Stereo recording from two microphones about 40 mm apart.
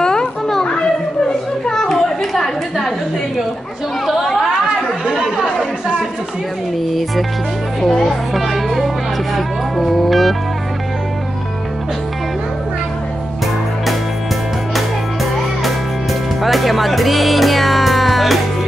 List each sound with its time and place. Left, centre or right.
0.0 s children playing: centre
1.7 s chatter: centre
2.0 s chatter: centre
4.0 s chatter: centre
7.8 s music: centre
9.8 s speech: centre
16.4 s music: centre